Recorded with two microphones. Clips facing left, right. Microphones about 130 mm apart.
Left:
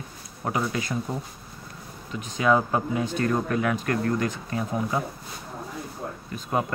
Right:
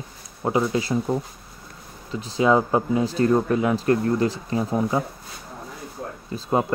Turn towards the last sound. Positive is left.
turn(degrees=-25)  # may be behind; listen again after turning